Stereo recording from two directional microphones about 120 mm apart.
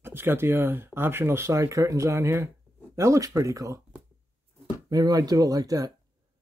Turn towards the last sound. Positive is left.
turn(degrees=-30)  # may be behind; listen again after turning